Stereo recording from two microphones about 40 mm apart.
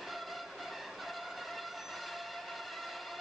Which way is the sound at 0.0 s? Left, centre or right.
Centre.